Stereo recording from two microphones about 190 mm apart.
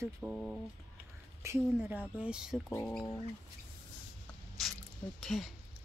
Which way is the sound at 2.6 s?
10° left (ahead or behind).